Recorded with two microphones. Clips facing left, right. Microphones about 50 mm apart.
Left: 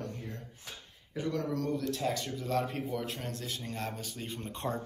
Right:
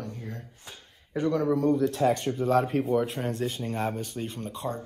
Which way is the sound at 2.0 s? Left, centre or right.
Right.